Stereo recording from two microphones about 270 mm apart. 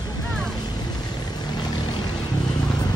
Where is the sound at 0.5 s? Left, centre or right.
Centre.